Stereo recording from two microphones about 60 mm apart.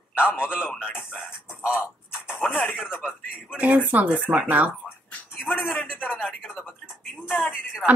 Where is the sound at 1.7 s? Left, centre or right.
Left.